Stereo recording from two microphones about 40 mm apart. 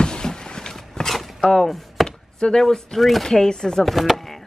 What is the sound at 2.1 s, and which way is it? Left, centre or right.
Chop, left.